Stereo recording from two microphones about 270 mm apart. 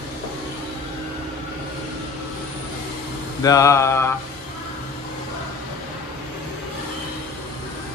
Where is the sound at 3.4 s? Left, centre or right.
Centre.